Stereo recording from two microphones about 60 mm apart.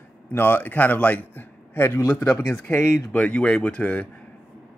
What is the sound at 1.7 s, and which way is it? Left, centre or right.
A man's voice, left.